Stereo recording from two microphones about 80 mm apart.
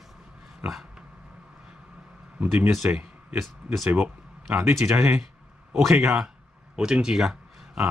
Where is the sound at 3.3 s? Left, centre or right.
Centre.